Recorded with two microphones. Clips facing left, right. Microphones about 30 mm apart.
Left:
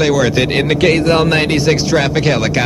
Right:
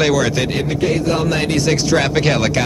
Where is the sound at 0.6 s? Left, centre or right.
Left.